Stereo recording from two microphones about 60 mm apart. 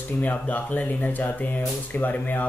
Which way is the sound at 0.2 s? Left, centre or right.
Left.